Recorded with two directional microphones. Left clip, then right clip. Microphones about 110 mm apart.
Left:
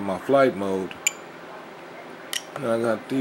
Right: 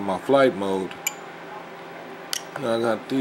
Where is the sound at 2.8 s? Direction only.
5° right (ahead or behind).